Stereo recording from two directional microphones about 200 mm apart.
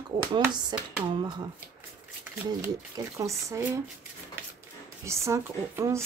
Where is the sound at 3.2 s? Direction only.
15° right (ahead or behind).